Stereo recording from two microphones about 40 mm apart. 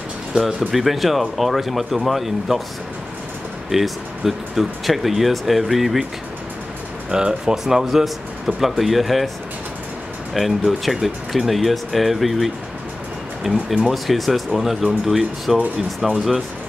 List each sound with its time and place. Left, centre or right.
0.7 s speech: centre
3.7 s speech: centre
7.1 s speech: centre
10.3 s speech: centre